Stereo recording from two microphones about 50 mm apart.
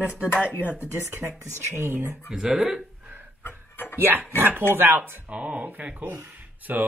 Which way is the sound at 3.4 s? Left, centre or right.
Left.